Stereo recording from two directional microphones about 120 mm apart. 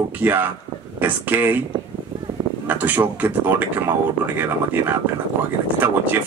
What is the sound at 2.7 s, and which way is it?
Speech, 15° right (ahead or behind).